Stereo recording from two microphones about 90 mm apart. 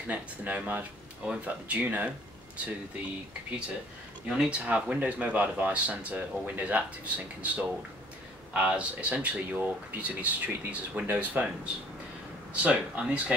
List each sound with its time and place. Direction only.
0.1 s speech: 15° right (ahead or behind)
4.3 s speech: 10° right (ahead or behind)